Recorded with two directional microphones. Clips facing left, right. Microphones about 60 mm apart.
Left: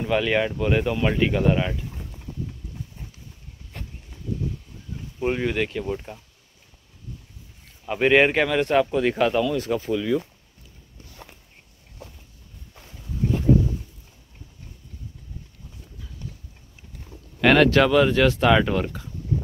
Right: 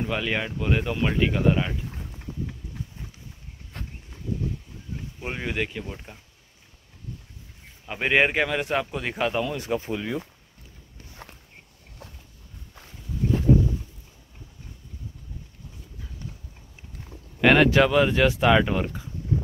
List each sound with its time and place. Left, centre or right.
0.0 s speech: centre
5.2 s speech: centre
7.9 s speech: centre
9.4 s speech: centre
17.4 s speech: centre